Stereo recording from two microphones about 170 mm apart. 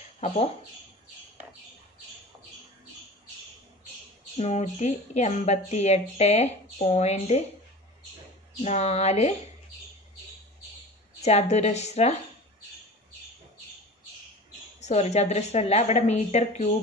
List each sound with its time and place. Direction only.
4.4 s a woman's voice: 40° left (ahead or behind)
8.6 s a woman's voice: 40° left (ahead or behind)
11.1 s a woman's voice: 40° left (ahead or behind)
14.8 s a woman's voice: 40° left (ahead or behind)